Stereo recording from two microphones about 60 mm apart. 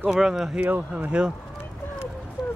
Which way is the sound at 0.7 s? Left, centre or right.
Right.